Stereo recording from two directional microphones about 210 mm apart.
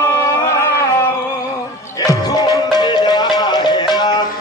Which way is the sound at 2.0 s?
20° left (ahead or behind).